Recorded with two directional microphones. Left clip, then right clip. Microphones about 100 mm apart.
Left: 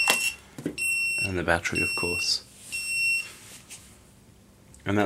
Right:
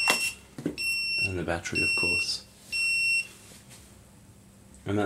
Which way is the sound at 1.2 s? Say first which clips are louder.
Left 4 dB; 40° left (ahead or behind).